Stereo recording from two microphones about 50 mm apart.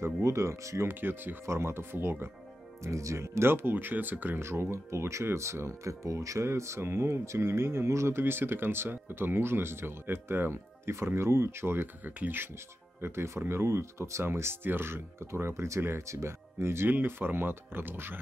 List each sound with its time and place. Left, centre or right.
0.0 s speech: right
2.8 s speech: right
4.4 s speech: right
8.2 s speech: right
12.0 s speech: right
13.0 s speech: right
17.0 s speech: right